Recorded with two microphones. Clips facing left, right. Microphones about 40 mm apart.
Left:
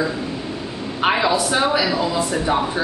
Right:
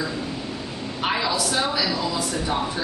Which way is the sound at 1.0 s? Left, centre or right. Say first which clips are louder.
Left 6 dB; left.